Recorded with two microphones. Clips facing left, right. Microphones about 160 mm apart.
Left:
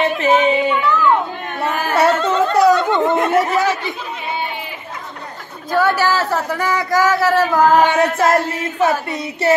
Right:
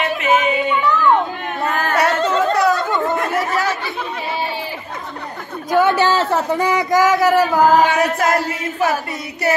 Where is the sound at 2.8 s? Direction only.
20° left (ahead or behind).